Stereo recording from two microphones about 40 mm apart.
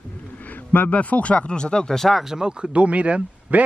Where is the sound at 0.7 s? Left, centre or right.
Left.